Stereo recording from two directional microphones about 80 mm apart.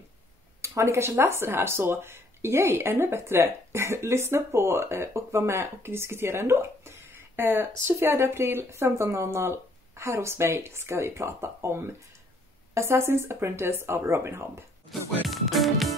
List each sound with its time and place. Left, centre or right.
0.6 s speech: right
14.9 s speech: centre